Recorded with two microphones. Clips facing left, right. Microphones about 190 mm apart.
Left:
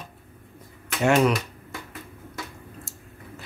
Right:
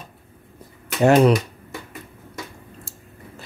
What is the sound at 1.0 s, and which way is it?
Speech, 35° right (ahead or behind).